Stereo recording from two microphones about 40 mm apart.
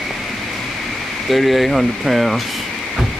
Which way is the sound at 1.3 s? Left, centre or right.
Centre.